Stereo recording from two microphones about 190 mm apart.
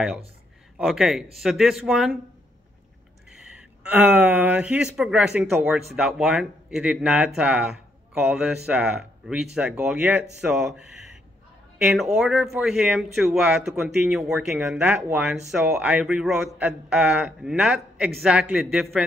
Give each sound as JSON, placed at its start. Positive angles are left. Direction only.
{"t": 0.7, "sound": "speech", "side_deg": 0}
{"t": 3.5, "sound": "speech", "side_deg": -5}